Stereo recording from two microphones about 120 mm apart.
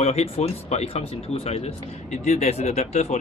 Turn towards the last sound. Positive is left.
turn(degrees=65)  # may be behind; listen again after turning